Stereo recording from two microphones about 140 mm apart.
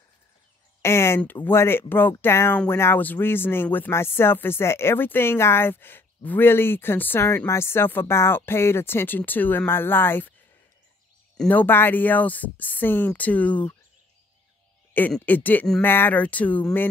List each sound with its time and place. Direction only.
0.8 s speech: 20° left (ahead or behind)
11.3 s speech: 10° left (ahead or behind)
15.0 s speech: 10° left (ahead or behind)